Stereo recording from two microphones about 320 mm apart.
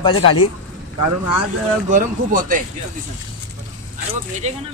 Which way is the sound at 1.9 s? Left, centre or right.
Right.